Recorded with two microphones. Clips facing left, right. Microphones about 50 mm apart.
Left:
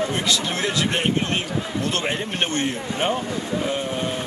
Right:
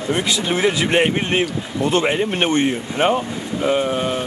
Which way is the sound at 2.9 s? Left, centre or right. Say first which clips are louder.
Right 5 dB; right.